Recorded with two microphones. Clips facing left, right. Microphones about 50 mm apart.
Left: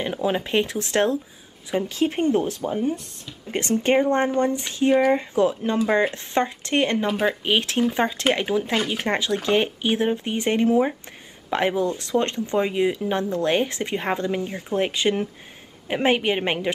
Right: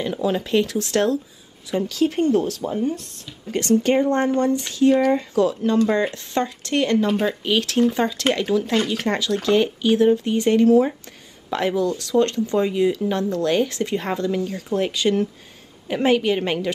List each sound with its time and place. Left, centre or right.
0.0 s speech: left
7.1 s speech: centre
7.4 s speech: left